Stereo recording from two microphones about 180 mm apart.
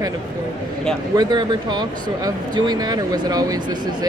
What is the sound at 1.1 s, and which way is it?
Speech, 20° right (ahead or behind).